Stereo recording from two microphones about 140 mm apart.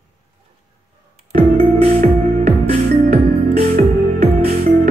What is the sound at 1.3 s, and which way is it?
Music, 45° right (ahead or behind).